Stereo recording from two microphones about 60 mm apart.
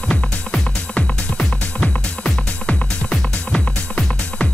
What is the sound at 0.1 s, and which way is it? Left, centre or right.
Music, centre.